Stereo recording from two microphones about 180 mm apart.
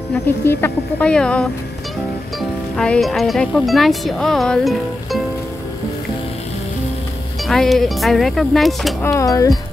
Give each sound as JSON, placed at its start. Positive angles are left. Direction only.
{"t": 0.5, "sound": "speech", "side_deg": 10}
{"t": 2.7, "sound": "speech", "side_deg": 5}
{"t": 7.4, "sound": "speech", "side_deg": 0}
{"t": 9.0, "sound": "speech", "side_deg": 15}